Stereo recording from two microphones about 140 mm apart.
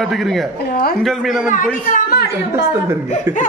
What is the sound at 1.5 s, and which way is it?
Speech, 70° left (ahead or behind).